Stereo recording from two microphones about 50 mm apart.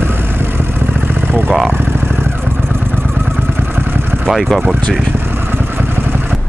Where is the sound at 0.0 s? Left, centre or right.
Right.